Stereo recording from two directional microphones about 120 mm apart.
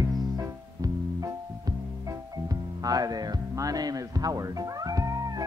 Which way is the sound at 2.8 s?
30° right (ahead or behind).